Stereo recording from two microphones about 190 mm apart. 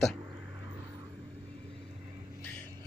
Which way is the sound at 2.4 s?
10° left (ahead or behind).